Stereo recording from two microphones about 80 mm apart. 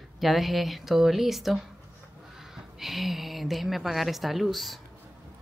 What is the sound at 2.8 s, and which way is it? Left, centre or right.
A woman's voice, centre.